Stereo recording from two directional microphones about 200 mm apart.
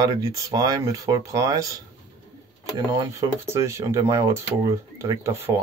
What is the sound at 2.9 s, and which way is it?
Speech, 15° right (ahead or behind).